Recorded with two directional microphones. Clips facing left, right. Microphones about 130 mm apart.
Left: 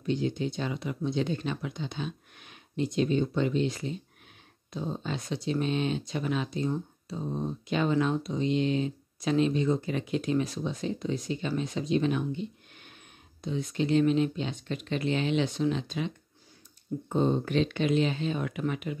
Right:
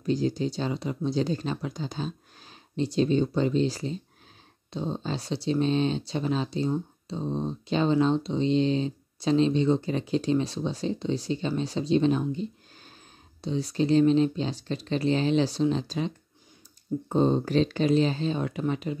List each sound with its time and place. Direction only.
0.0 s speech: 35° right (ahead or behind)
17.1 s speech: 30° right (ahead or behind)